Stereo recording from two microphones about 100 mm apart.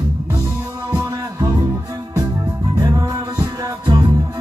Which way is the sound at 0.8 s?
45° right (ahead or behind).